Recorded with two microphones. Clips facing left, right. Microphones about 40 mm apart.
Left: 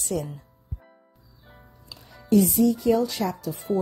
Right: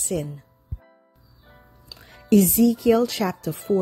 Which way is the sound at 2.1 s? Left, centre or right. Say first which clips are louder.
Right 2 dB; right.